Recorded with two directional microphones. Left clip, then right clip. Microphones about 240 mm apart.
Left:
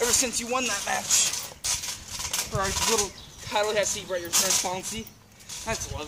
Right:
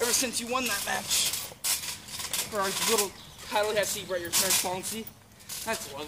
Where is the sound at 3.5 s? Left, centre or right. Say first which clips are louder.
Left 2 dB; centre.